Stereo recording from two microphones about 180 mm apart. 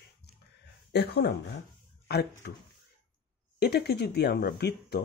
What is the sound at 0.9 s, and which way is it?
Speech, 65° left (ahead or behind).